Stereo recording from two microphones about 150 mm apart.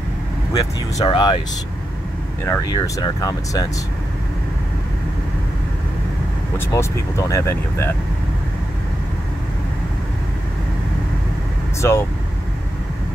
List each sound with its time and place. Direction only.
0.7 s speech: 30° left (ahead or behind)
2.4 s speech: 15° left (ahead or behind)
2.7 s speech: 25° left (ahead or behind)
6.7 s speech: 20° left (ahead or behind)
11.8 s speech: 15° left (ahead or behind)